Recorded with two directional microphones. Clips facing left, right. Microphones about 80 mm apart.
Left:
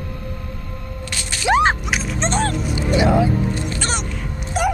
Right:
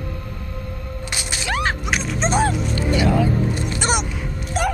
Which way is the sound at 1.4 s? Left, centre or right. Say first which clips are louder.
Left 8 dB; left.